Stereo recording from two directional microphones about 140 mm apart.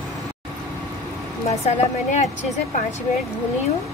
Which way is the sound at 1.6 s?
50° left (ahead or behind).